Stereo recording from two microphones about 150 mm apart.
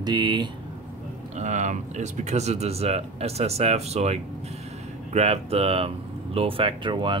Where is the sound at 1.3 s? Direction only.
50° right (ahead or behind).